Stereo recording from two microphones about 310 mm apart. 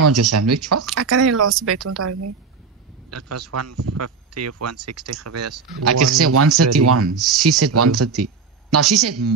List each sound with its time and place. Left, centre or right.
0.0 s speech: right
7.2 s speech: centre
7.4 s speech: right